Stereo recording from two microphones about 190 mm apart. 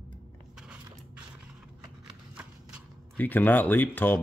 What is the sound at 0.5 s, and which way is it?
Biting, 5° right (ahead or behind).